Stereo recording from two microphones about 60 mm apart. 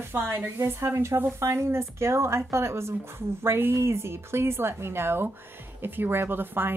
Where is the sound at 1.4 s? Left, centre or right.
Right.